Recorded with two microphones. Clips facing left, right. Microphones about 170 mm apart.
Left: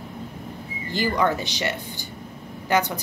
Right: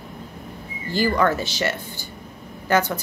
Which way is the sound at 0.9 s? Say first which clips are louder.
Right 2 dB; 20° left (ahead or behind).